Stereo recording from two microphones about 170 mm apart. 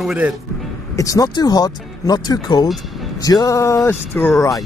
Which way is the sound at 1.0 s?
20° left (ahead or behind).